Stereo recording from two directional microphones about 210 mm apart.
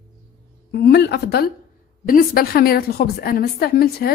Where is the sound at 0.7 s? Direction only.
50° left (ahead or behind).